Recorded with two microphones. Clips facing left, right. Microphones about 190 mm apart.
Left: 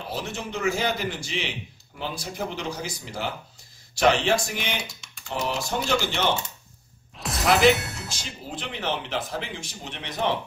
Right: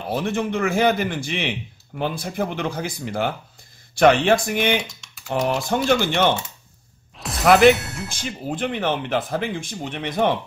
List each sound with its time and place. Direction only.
0.1 s a man's voice: 55° right (ahead or behind)
7.2 s music: centre (ahead or behind)
7.5 s speech: centre (ahead or behind)
8.5 s speech: 50° right (ahead or behind)